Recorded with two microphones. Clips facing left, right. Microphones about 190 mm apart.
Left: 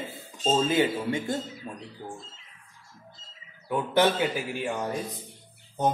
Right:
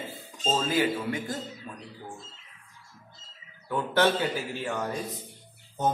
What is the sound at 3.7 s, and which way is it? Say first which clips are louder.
Speech: left 1 dB; 20° left (ahead or behind).